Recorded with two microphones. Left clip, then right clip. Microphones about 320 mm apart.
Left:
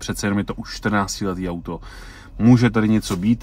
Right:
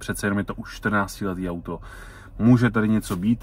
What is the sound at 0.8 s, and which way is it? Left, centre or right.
Speech, centre.